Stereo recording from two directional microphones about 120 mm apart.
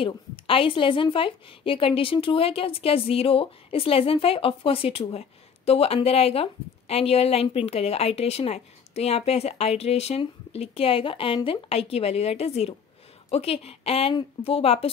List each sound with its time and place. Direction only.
0.0 s a woman's voice: 50° left (ahead or behind)